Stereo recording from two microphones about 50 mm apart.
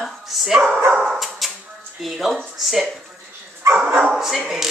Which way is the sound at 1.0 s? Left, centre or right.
Centre.